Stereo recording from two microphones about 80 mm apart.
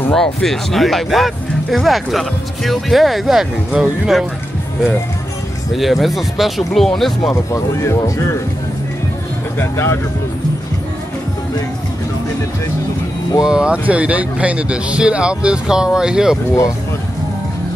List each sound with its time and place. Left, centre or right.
0.1 s speech: centre
5.8 s speech: centre
7.5 s speech: left
9.6 s speech: left
13.5 s speech: centre